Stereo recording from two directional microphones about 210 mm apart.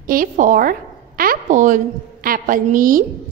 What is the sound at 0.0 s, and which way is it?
A woman's voice, 40° right (ahead or behind).